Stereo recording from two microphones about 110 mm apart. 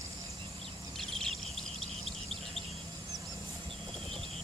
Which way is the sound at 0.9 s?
Centre (ahead or behind).